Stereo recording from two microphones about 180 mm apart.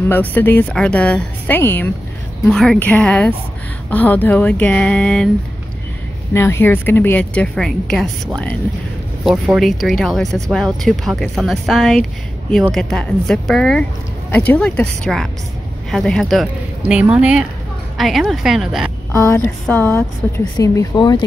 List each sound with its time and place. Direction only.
0.1 s a woman's voice: 10° left (ahead or behind)
6.3 s a woman's voice: 15° left (ahead or behind)
9.6 s speech: centre (ahead or behind)
19.1 s a woman's voice: 15° left (ahead or behind)